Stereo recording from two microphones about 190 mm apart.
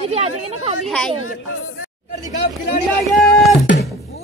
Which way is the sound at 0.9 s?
5° left (ahead or behind).